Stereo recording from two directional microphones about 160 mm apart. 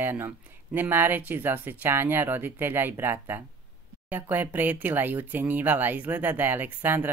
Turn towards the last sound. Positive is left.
turn(degrees=-15)  # may be behind; listen again after turning